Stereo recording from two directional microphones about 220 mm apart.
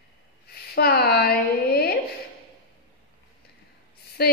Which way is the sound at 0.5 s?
45° left (ahead or behind).